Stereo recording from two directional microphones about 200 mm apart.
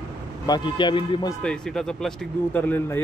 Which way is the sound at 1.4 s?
5° left (ahead or behind).